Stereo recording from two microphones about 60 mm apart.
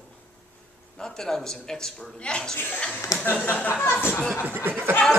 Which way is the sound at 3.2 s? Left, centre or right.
Left.